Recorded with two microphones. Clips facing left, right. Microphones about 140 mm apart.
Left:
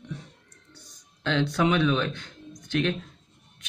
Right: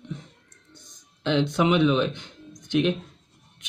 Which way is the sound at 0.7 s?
20° right (ahead or behind).